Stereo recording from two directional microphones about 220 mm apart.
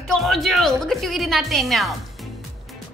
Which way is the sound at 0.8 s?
Centre (ahead or behind).